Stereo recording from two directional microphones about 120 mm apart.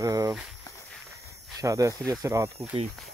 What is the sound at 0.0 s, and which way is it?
Walk, 30° right (ahead or behind).